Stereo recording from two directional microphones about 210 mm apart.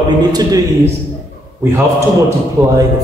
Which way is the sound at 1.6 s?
15° right (ahead or behind).